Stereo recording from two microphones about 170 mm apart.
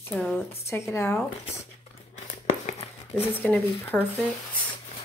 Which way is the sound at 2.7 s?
35° left (ahead or behind).